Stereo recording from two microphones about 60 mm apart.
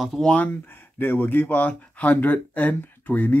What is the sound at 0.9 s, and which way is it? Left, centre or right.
Speech, left.